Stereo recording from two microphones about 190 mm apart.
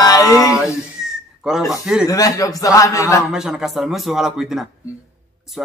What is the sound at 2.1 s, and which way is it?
Speech, 20° left (ahead or behind).